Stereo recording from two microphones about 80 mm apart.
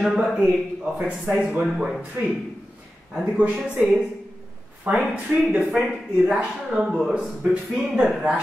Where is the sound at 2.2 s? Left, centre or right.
Right.